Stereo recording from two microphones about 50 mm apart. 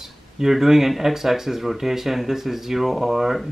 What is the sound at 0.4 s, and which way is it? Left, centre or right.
Speech, centre.